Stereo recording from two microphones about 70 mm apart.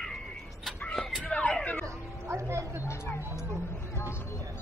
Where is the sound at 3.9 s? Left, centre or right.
Left.